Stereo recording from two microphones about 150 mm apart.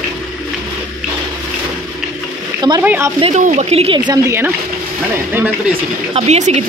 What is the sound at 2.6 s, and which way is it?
Speech, 30° right (ahead or behind).